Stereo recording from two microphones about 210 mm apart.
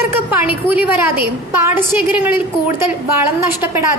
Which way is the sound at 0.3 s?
10° right (ahead or behind).